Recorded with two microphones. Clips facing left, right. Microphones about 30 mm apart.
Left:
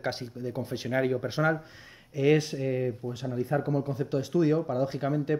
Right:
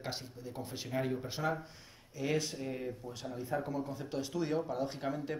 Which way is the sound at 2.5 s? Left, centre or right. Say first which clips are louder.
Left 10 dB; left.